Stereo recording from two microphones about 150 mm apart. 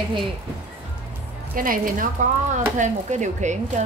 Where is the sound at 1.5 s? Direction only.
65° right (ahead or behind).